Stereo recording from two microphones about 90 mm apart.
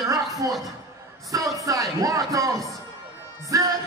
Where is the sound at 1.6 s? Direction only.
40° right (ahead or behind).